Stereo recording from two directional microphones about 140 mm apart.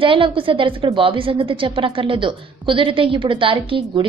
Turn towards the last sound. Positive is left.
turn(degrees=-40)  # may be behind; listen again after turning